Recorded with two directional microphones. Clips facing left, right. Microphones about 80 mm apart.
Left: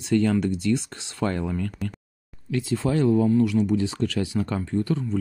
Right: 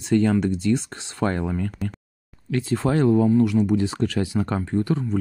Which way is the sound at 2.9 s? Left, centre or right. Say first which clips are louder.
Right 2 dB; right.